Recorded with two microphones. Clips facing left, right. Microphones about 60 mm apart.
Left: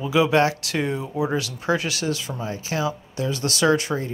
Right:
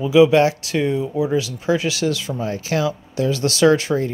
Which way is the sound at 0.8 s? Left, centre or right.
Left.